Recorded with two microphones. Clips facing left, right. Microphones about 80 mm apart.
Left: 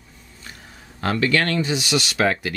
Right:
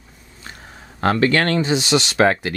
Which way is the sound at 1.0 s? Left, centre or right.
Right.